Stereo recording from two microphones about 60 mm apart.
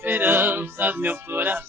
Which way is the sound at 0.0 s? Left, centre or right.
Right.